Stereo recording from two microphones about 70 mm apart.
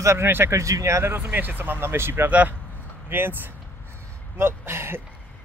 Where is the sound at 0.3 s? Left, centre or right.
Right.